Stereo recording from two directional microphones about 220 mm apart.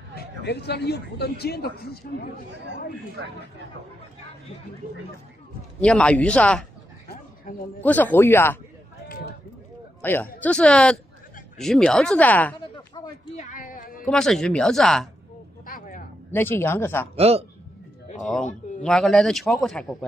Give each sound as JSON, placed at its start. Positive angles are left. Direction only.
{"t": 0.4, "sound": "a man's voice", "side_deg": 50}
{"t": 5.8, "sound": "a man's voice", "side_deg": 5}
{"t": 7.5, "sound": "speech", "side_deg": 35}
{"t": 7.8, "sound": "speech", "side_deg": 10}
{"t": 10.0, "sound": "a man's voice", "side_deg": 10}
{"t": 13.4, "sound": "a sound", "side_deg": 35}
{"t": 14.0, "sound": "a man's voice", "side_deg": 5}
{"t": 15.6, "sound": "vehicle", "side_deg": 40}
{"t": 16.3, "sound": "speech", "side_deg": 10}
{"t": 17.1, "sound": "speech", "side_deg": -25}
{"t": 18.2, "sound": "a man's voice", "side_deg": 0}